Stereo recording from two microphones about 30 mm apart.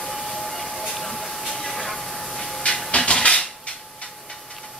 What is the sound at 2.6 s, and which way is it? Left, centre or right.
Printer, left.